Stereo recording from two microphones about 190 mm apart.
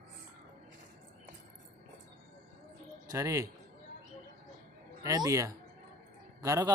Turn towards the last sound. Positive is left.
turn(degrees=-15)  # may be behind; listen again after turning